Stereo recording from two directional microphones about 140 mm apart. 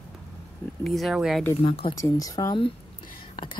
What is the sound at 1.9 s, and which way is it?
Speech, 25° left (ahead or behind).